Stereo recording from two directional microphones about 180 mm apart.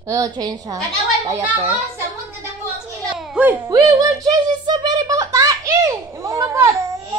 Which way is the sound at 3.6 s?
20° right (ahead or behind).